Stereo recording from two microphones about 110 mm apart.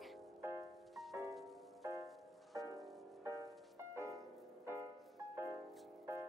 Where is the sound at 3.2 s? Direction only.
30° right (ahead or behind).